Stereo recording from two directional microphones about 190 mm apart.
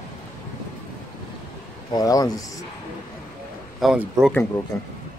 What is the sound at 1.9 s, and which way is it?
Speech, 20° left (ahead or behind).